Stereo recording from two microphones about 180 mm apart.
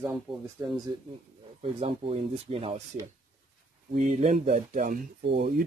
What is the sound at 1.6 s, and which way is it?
Speech, 30° right (ahead or behind).